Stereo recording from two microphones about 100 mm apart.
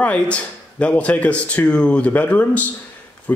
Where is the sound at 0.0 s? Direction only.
15° left (ahead or behind).